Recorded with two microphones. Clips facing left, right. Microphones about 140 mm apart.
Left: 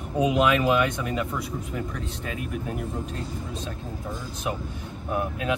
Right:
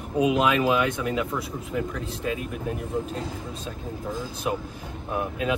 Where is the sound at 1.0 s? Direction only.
Centre (ahead or behind).